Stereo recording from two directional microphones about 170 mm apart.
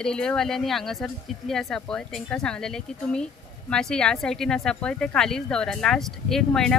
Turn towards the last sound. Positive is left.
turn(degrees=5)  # may be behind; listen again after turning